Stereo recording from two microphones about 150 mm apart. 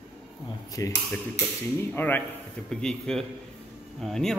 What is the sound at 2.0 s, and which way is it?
A man's voice, 15° left (ahead or behind).